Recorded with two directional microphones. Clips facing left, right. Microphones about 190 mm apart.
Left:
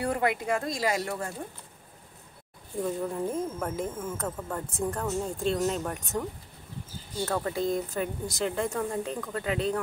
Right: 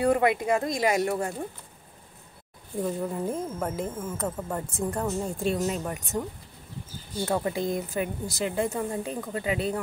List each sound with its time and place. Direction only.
0.0 s speech: 20° right (ahead or behind)
2.8 s speech: 5° right (ahead or behind)
7.2 s speech: 10° right (ahead or behind)